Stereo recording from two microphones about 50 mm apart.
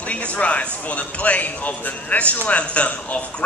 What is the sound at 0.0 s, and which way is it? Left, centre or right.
Speech, left.